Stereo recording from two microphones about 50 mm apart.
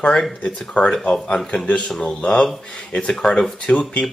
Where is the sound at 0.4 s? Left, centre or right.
Left.